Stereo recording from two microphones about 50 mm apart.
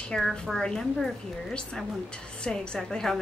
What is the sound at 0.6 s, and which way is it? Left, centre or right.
Speech, centre.